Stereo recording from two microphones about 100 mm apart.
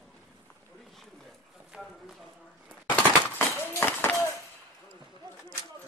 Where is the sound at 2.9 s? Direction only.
15° left (ahead or behind).